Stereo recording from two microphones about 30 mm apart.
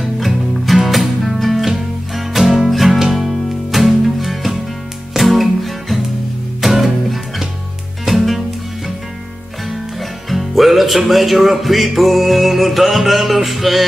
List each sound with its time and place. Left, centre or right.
0.0 s music: centre
10.3 s music: centre